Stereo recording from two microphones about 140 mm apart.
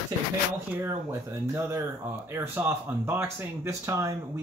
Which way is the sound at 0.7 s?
15° right (ahead or behind).